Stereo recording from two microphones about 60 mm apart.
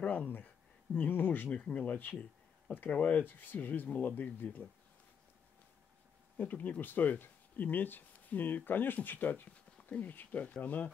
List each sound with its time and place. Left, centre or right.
0.0 s a sound: left
0.9 s speech: left
6.3 s speech: left